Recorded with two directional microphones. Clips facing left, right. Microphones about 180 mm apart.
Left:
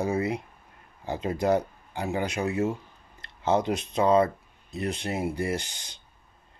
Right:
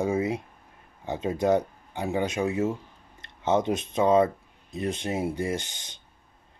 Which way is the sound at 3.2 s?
20° right (ahead or behind).